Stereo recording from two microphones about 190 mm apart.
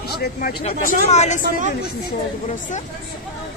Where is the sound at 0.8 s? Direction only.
40° left (ahead or behind).